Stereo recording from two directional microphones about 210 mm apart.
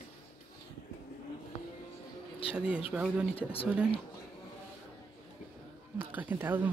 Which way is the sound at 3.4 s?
25° left (ahead or behind).